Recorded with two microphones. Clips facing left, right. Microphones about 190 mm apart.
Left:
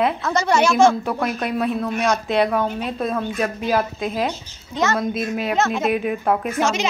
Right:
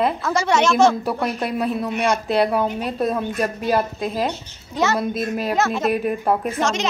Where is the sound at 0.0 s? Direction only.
5° right (ahead or behind).